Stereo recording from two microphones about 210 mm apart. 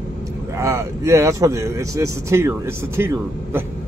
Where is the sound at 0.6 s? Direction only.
15° right (ahead or behind).